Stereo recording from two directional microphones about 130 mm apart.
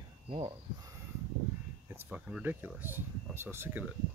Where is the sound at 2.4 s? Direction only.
15° right (ahead or behind).